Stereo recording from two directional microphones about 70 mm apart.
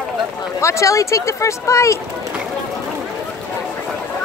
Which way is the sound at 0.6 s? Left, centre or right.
Left.